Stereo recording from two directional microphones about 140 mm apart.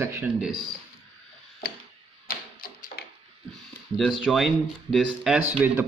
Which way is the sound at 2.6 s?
90° left.